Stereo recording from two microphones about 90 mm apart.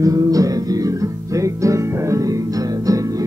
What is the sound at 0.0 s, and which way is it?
Music, 40° right (ahead or behind).